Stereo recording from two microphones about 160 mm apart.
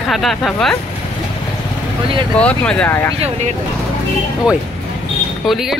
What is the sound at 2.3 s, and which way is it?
Speech, 5° left (ahead or behind).